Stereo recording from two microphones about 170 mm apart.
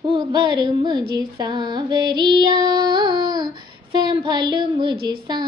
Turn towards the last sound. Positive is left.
turn(degrees=-25)  # may be behind; listen again after turning